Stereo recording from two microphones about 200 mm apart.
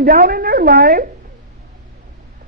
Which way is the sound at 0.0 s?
45° right (ahead or behind).